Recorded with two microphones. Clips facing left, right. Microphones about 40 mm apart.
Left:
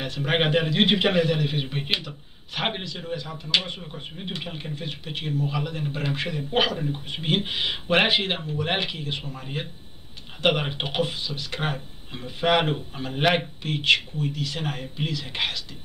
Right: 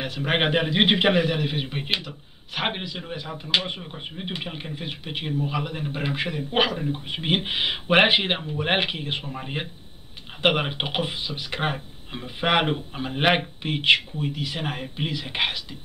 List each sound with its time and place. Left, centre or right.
0.0 s speech: centre